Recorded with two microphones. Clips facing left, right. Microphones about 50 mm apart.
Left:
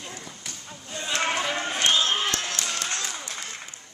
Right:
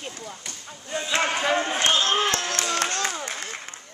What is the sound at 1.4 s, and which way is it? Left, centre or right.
Run, right.